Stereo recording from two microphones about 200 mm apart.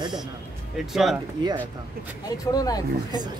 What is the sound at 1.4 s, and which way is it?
Speech, 20° right (ahead or behind).